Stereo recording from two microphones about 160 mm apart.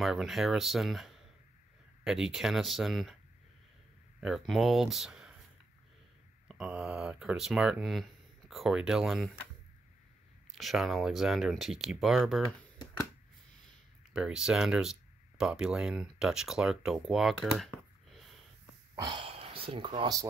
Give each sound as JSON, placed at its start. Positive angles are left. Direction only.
{"t": 0.0, "sound": "speech", "side_deg": 0}
{"t": 4.2, "sound": "speech", "side_deg": 0}
{"t": 6.4, "sound": "speech", "side_deg": -5}
{"t": 10.5, "sound": "speech", "side_deg": 0}
{"t": 14.1, "sound": "speech", "side_deg": -5}
{"t": 18.9, "sound": "a sound", "side_deg": -30}
{"t": 19.7, "sound": "speech", "side_deg": -35}